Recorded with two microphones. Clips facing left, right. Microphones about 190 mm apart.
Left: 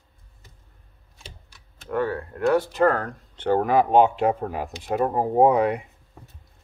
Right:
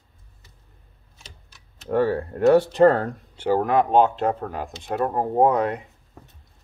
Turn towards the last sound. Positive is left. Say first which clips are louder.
# left 1 dB
turn(degrees=10)  # may be behind; listen again after turning